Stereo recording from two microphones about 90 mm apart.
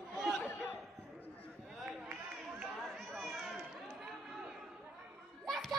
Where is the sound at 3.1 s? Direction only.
Centre (ahead or behind).